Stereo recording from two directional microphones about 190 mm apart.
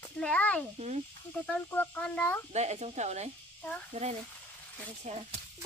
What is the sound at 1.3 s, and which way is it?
Speech, 10° left (ahead or behind).